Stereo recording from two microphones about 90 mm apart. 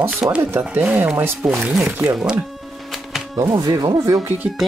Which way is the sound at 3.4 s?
40° right (ahead or behind).